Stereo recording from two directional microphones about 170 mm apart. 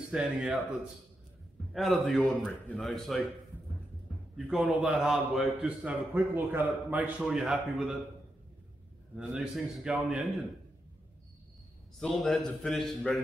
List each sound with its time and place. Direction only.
0.1 s a man's voice: 5° right (ahead or behind)
1.7 s a man's voice: centre (ahead or behind)
4.4 s a man's voice: 5° right (ahead or behind)
9.1 s a man's voice: 5° right (ahead or behind)
12.0 s a man's voice: 5° left (ahead or behind)